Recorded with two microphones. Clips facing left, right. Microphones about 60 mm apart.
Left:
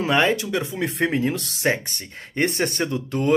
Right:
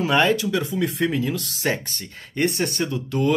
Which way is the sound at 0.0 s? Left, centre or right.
Left.